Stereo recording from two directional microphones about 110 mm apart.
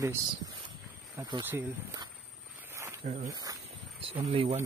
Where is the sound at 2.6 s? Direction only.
25° right (ahead or behind).